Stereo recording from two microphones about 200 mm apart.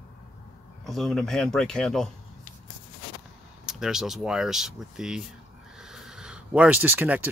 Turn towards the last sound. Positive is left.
turn(degrees=-10)  # may be behind; listen again after turning